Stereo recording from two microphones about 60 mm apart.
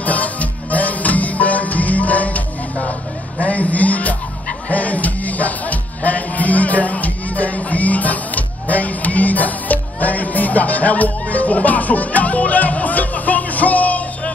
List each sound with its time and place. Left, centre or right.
0.0 s music: left